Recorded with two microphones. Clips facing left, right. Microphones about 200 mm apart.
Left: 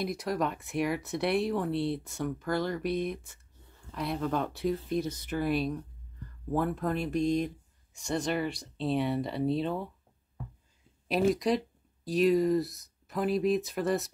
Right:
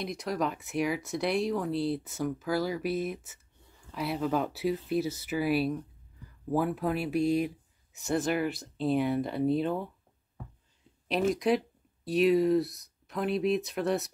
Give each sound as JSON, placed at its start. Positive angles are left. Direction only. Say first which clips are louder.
{"t": 0.0, "sound": "speech", "louder": "left 1 dB", "side_deg": 0}
{"t": 11.1, "sound": "speech", "louder": "even", "side_deg": 0}